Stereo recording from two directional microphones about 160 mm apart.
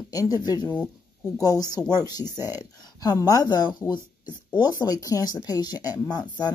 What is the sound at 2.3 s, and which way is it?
Speech, 15° right (ahead or behind).